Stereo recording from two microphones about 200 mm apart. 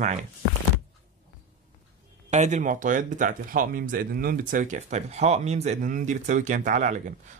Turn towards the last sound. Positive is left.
turn(degrees=-40)  # may be behind; listen again after turning